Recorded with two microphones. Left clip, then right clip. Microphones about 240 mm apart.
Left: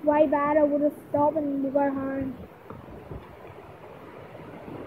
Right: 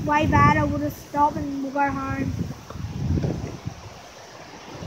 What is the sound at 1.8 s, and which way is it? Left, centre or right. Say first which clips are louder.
Speech: right 4 dB; centre.